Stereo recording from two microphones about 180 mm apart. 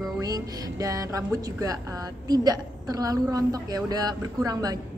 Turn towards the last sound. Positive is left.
turn(degrees=-20)  # may be behind; listen again after turning